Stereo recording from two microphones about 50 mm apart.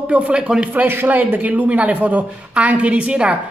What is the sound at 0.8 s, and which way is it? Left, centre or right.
Speech, right.